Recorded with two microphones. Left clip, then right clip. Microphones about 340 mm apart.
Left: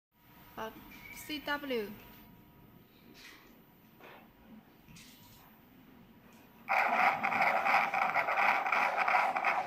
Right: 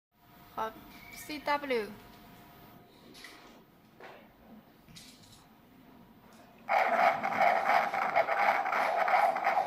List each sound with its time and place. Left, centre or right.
1.2 s a woman's voice: right
6.7 s dog: centre